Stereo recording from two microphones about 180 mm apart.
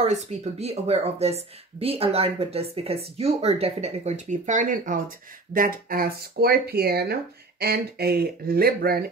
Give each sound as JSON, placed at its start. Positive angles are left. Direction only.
{"t": 0.0, "sound": "a woman's voice", "side_deg": -40}